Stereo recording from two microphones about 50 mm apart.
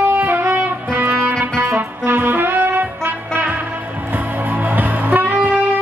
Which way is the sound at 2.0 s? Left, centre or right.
Right.